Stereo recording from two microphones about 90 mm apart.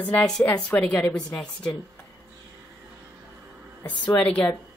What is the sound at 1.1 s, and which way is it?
Speech, 5° left (ahead or behind).